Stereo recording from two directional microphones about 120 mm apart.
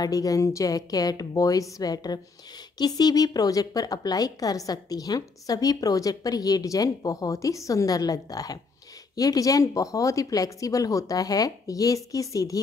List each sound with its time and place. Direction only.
0.0 s a woman's voice: 30° left (ahead or behind)